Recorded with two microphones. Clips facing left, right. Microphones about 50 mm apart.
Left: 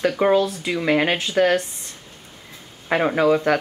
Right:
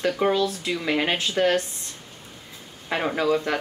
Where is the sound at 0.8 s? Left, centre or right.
Left.